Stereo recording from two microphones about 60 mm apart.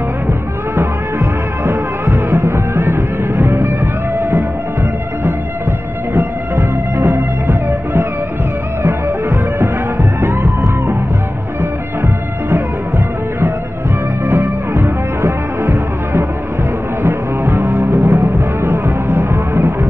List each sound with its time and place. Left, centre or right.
1.2 s music: right
8.8 s music: right
12.0 s music: right
14.2 s music: right